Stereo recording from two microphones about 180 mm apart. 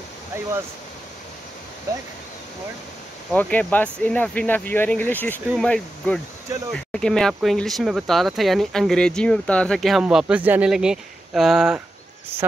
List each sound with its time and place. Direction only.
3.3 s speech: 5° left (ahead or behind)